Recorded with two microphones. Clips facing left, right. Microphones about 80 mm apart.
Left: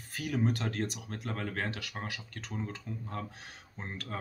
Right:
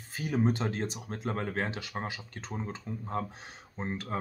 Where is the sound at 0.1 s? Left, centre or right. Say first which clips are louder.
Right 3 dB; right.